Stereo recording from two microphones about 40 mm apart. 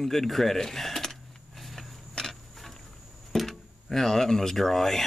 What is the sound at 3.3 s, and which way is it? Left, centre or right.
Speech, centre.